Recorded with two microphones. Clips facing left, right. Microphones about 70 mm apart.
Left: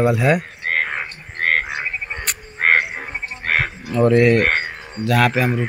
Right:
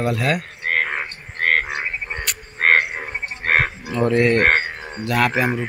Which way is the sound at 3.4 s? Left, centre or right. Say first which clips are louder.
Right 2 dB; right.